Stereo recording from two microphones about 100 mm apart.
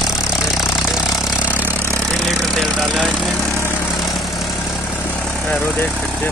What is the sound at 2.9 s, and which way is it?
Speech, 10° right (ahead or behind).